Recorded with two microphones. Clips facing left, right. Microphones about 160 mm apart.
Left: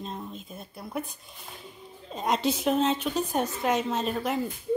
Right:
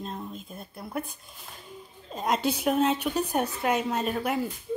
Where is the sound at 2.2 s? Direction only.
Centre (ahead or behind).